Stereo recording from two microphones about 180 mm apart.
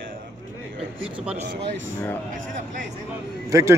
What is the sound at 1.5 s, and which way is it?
Speech, 85° right.